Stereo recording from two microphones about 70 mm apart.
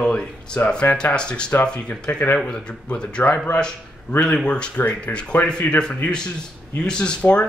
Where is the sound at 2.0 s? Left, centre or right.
Left.